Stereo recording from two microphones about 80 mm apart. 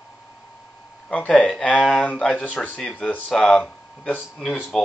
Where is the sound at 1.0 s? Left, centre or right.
Centre.